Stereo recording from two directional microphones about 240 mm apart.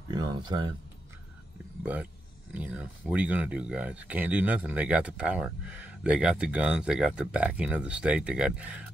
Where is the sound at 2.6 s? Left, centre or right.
Centre.